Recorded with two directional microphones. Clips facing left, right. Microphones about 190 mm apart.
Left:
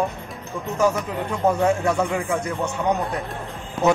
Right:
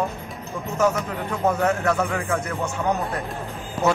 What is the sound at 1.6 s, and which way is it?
Speech, 10° left (ahead or behind).